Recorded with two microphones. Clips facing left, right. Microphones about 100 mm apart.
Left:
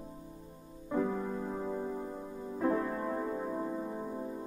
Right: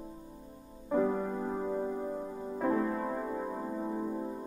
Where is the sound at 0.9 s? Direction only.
25° right (ahead or behind).